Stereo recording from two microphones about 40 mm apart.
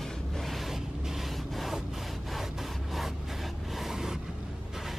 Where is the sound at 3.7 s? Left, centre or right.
Centre.